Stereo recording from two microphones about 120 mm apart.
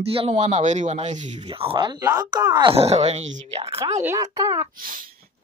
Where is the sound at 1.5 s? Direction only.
50° right (ahead or behind).